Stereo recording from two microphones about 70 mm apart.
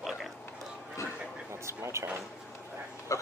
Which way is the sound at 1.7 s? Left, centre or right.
Right.